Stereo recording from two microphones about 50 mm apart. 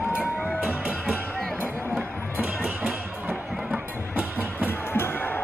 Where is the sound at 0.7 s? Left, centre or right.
Right.